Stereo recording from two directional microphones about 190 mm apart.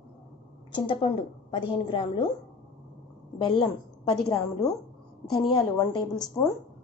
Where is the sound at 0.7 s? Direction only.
25° left (ahead or behind).